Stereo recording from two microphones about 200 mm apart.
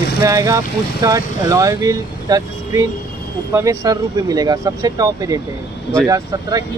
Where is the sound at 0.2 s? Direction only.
15° right (ahead or behind).